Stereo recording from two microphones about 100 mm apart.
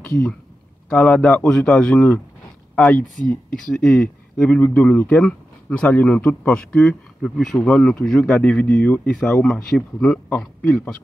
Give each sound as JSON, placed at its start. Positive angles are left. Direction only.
{"t": 0.9, "sound": "speech", "side_deg": 10}
{"t": 10.6, "sound": "speech", "side_deg": 15}